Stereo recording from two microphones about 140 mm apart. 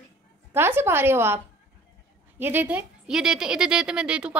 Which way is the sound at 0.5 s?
15° right (ahead or behind).